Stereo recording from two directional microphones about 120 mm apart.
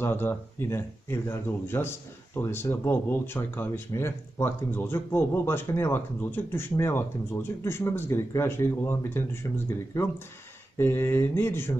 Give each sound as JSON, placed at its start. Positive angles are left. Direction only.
{"t": 0.0, "sound": "speech", "side_deg": 20}